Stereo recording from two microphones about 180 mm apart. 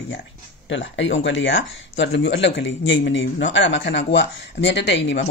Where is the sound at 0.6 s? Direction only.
90° left.